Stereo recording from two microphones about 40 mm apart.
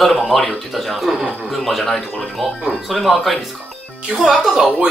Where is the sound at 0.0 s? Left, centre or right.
Centre.